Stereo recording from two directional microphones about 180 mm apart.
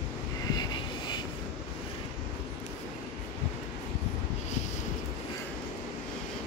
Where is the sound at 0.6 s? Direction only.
25° left (ahead or behind).